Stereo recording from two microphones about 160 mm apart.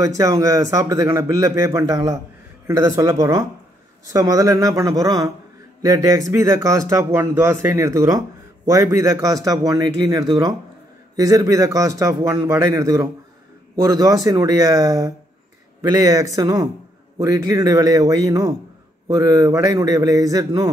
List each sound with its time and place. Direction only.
0.0 s a man's voice: 20° right (ahead or behind)